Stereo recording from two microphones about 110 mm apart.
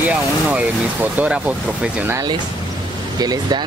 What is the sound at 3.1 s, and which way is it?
Speech, 35° right (ahead or behind).